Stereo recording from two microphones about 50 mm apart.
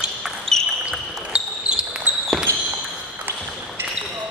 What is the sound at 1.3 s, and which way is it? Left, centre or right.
Basketball bounce, centre.